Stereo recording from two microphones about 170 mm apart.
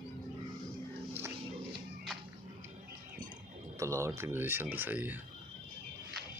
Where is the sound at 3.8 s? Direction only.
15° right (ahead or behind).